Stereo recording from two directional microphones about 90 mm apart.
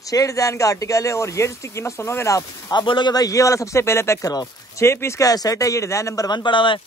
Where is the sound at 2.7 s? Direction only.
60° left (ahead or behind).